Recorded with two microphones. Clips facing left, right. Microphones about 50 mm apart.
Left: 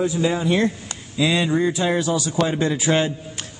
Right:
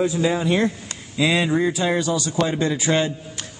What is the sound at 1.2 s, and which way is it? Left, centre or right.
Speech, centre.